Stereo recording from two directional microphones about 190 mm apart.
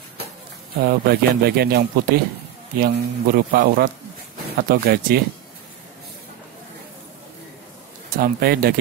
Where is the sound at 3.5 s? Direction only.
50° right (ahead or behind).